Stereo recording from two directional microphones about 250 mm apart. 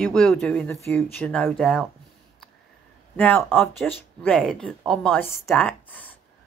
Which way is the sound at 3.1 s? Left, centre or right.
Centre.